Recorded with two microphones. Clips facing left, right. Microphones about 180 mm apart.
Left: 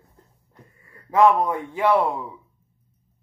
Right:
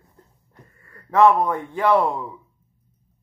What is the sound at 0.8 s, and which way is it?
A man's voice, 10° left (ahead or behind).